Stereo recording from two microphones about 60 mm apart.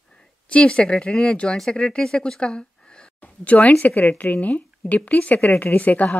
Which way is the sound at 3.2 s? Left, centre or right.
Left.